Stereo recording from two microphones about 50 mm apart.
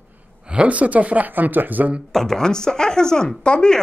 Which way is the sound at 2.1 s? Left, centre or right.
Centre.